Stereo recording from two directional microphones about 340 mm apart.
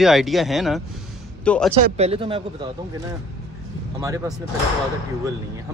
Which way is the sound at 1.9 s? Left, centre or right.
Centre.